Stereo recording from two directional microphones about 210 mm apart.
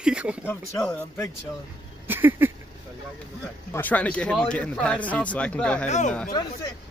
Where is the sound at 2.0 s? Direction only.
10° right (ahead or behind).